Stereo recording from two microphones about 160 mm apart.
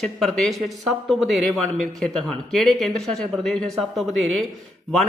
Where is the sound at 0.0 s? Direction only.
Centre (ahead or behind).